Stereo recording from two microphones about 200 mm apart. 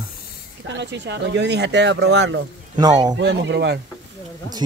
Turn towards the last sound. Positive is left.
turn(degrees=-60)  # may be behind; listen again after turning